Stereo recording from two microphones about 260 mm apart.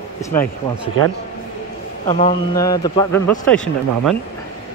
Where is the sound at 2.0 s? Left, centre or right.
Left.